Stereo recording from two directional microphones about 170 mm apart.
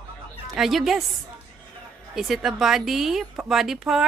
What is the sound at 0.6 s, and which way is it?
Speech, centre (ahead or behind).